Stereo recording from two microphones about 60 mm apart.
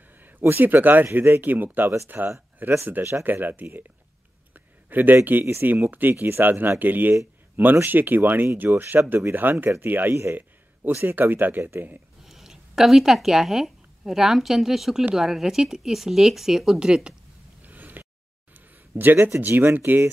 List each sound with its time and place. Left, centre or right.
0.2 s speech: right
4.6 s a sound: right
5.4 s speech: right
5.9 s speech: right
12.3 s speech: centre
17.6 s a sound: right
19.5 s speech: right